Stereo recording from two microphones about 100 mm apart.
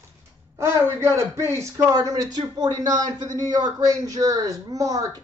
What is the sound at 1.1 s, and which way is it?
Speech, 30° right (ahead or behind).